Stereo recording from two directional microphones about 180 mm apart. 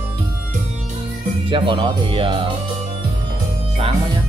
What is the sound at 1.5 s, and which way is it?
Speech, 25° right (ahead or behind).